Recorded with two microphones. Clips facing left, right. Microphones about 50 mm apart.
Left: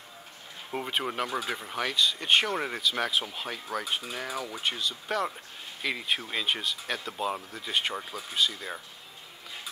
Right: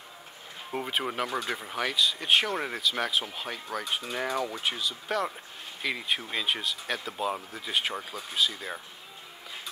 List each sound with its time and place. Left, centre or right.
0.7 s speech: centre